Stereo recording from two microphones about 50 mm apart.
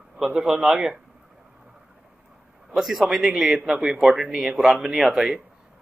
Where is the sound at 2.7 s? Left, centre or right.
Centre.